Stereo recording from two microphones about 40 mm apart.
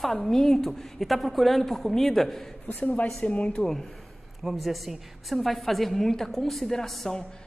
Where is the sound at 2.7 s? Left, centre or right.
Left.